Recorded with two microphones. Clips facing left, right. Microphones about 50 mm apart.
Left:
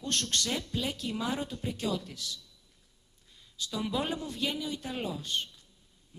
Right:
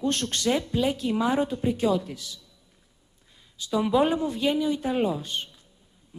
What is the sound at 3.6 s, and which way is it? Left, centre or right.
A man's voice, centre.